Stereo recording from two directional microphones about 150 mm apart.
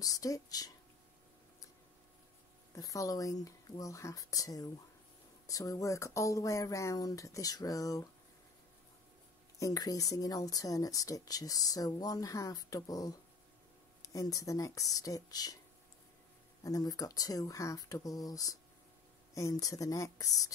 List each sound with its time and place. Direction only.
0.0 s speech: 25° left (ahead or behind)
2.7 s speech: 20° left (ahead or behind)
9.6 s speech: 25° left (ahead or behind)
16.6 s speech: 25° left (ahead or behind)